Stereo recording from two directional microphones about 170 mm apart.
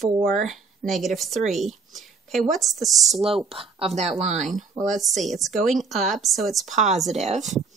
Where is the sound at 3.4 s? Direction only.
35° right (ahead or behind).